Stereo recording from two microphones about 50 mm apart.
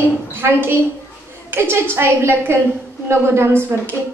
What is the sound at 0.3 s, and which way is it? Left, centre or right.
A woman's voice, right.